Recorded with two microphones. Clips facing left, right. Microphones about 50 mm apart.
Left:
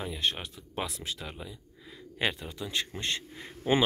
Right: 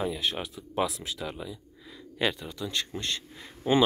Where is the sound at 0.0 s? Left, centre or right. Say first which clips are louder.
Right 2 dB; centre.